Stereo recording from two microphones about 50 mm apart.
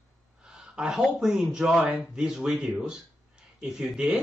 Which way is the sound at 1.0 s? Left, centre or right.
Centre.